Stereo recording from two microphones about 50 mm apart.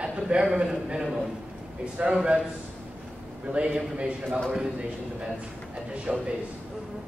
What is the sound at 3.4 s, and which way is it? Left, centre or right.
Speech, right.